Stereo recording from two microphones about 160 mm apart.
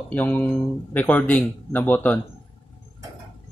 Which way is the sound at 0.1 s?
10° left (ahead or behind).